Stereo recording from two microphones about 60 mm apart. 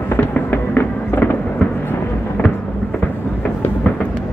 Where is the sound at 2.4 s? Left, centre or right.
Left.